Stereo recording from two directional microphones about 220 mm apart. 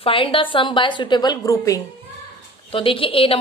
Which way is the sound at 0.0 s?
25° left (ahead or behind).